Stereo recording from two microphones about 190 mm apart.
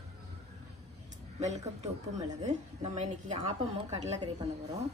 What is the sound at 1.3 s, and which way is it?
A woman's voice, 35° right (ahead or behind).